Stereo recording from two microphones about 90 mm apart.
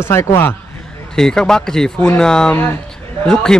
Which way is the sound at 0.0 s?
30° left (ahead or behind).